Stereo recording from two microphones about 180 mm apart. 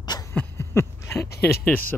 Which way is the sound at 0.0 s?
20° left (ahead or behind).